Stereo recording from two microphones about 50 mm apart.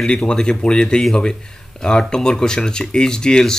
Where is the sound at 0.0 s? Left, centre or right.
Centre.